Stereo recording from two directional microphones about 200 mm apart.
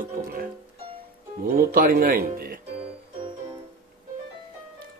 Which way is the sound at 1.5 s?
45° right (ahead or behind).